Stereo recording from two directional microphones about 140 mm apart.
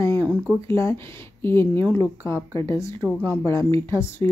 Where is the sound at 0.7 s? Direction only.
20° left (ahead or behind).